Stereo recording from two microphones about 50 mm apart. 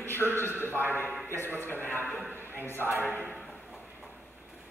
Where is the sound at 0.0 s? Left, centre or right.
Left.